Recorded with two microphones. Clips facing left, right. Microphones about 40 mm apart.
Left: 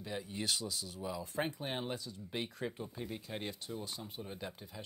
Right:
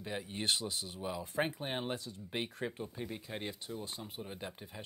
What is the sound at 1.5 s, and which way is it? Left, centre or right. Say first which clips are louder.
Speech: right 1 dB; right.